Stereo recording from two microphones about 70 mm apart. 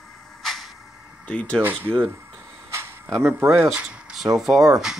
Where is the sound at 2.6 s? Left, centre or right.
Right.